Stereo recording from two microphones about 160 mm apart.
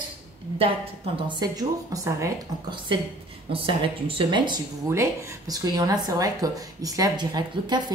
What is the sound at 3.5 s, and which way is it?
Speech, 35° right (ahead or behind).